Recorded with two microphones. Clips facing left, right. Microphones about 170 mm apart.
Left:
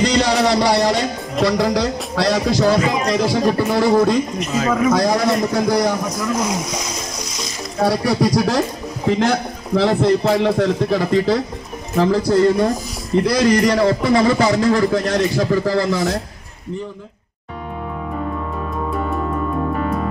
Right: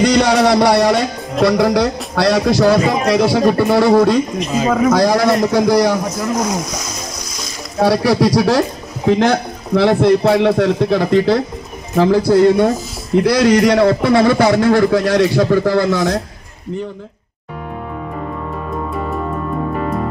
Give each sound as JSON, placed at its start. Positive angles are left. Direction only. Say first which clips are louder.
{"t": 0.0, "sound": "music", "louder": "right 4 dB", "side_deg": -60}
{"t": 1.4, "sound": "a man's voice", "louder": "right 4 dB", "side_deg": -65}
{"t": 7.8, "sound": "a man's voice", "louder": "right 4 dB", "side_deg": -90}